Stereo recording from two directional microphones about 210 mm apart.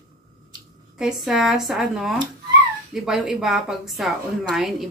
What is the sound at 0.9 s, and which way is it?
A woman's voice, centre (ahead or behind).